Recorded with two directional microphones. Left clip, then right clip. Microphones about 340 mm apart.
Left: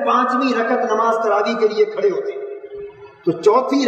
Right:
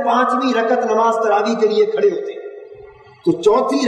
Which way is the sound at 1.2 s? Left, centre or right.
Right.